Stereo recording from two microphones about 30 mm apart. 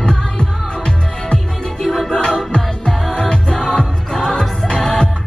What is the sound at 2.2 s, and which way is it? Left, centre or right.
Music, left.